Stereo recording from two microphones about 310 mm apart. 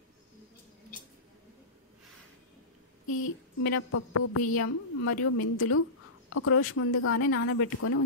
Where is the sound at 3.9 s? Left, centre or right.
Left.